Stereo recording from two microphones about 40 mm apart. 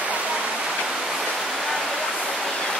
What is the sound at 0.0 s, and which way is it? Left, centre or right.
Rain, right.